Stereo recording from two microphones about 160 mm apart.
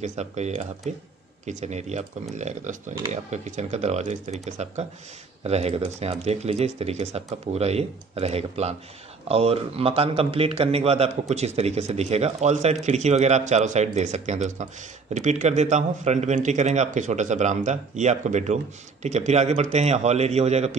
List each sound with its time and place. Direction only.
0.0 s a man's voice: 45° right (ahead or behind)